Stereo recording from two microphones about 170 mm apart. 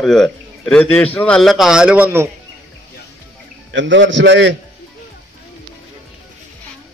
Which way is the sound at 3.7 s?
90° right.